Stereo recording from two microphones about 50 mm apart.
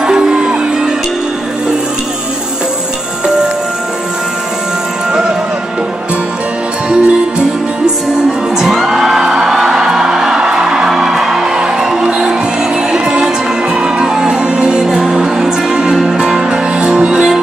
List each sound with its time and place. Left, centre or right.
0.0 s music: centre
6.9 s music: centre